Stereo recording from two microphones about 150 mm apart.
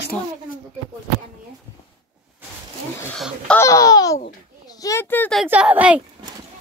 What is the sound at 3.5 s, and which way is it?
A child's voice, 20° left (ahead or behind).